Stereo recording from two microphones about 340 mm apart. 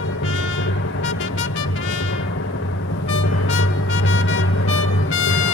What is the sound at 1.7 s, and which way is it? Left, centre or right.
Music, left.